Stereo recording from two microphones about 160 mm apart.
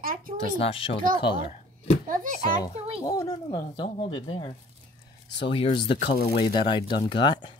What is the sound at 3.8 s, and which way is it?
Speech, 35° left (ahead or behind).